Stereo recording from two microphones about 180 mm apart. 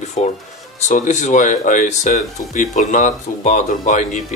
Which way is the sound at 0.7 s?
40° left (ahead or behind).